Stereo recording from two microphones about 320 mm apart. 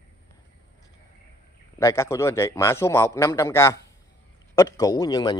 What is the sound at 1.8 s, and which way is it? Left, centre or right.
A man's voice, centre.